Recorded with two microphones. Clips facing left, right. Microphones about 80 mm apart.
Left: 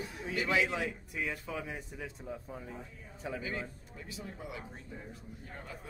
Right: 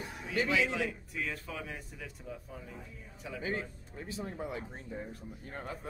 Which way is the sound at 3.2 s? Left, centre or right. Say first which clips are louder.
Left 4 dB; left.